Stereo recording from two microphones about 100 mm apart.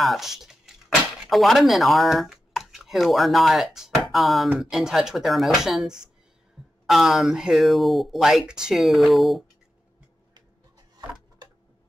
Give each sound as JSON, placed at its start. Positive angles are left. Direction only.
{"t": 0.0, "sound": "speech", "side_deg": 0}